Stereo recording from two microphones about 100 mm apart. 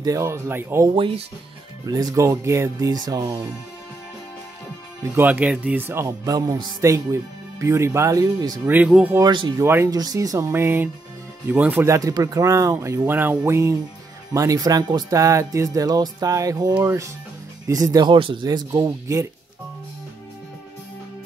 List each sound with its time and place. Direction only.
0.0 s speech: 35° right (ahead or behind)
0.9 s speech: 55° right (ahead or behind)
1.9 s speech: 35° right (ahead or behind)
5.0 s speech: 20° right (ahead or behind)
6.2 s speech: 40° right (ahead or behind)
9.2 s speech: 50° right (ahead or behind)
9.6 s speech: 25° right (ahead or behind)
9.8 s speech: 40° right (ahead or behind); by 11.8 s 15° right (ahead or behind)
11.8 s speech: 30° right (ahead or behind)
13.5 s speech: 30° right (ahead or behind)